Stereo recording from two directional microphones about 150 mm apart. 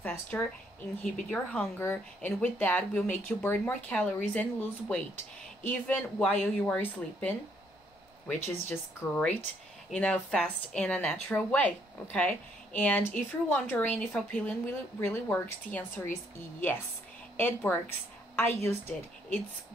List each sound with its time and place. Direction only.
0.0 s speech: 10° left (ahead or behind)
17.4 s a woman's voice: 15° left (ahead or behind)